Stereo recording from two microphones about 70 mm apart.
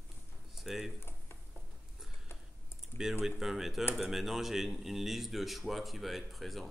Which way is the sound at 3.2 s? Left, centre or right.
Centre.